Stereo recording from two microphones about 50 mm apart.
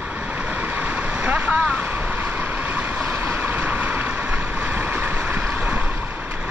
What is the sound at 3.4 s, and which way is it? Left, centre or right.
Vehicle, right.